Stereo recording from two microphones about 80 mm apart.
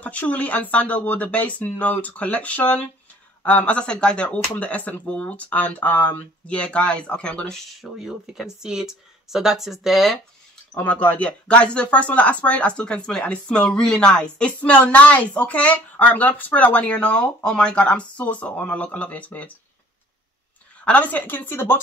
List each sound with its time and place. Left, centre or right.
0.0 s speech: centre
10.8 s speech: centre
20.8 s speech: centre